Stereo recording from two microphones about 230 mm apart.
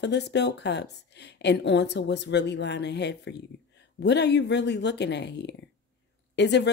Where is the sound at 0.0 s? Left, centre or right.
Left.